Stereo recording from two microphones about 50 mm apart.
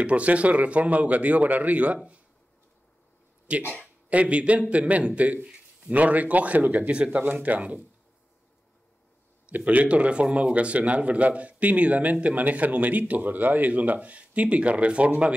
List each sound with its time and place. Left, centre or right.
0.0 s speech: right
3.5 s speech: right
6.9 s speech: right
9.7 s speech: right